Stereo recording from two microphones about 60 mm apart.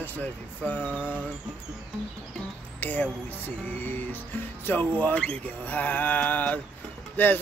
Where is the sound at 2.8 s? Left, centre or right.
Left.